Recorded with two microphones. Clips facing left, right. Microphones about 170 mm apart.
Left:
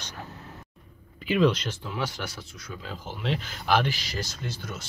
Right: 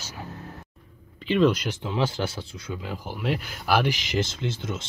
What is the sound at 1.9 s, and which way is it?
Speech, 25° right (ahead or behind).